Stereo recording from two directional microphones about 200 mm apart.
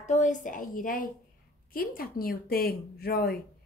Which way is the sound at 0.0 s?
35° left (ahead or behind).